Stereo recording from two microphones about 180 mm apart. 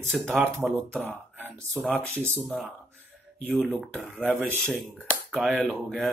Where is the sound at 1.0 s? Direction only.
10° right (ahead or behind).